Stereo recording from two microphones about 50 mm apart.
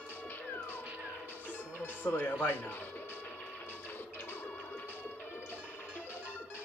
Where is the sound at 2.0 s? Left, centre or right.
Left.